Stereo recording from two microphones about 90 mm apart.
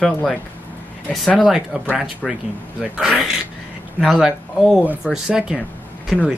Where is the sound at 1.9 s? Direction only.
5° right (ahead or behind).